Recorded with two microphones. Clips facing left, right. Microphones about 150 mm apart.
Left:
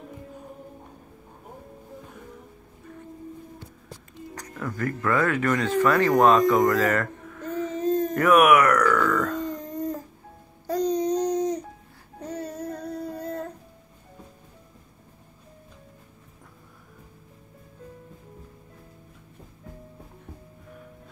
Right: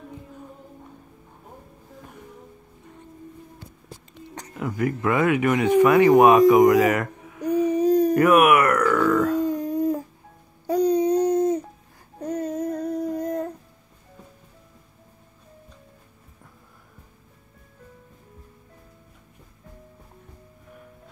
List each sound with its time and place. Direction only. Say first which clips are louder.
4.6 s speech: right 4 dB; 15° right (ahead or behind)
8.1 s a sound: left 2 dB; 5° right (ahead or behind)
12.2 s child singing: right 6 dB; 10° right (ahead or behind)